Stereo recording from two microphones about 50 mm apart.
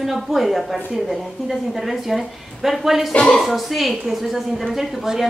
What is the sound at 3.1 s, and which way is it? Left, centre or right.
Speech, centre.